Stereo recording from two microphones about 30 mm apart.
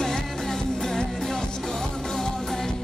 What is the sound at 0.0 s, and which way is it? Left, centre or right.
Music, centre.